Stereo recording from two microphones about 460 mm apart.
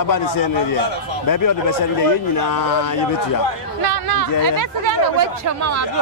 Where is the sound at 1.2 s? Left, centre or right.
Left.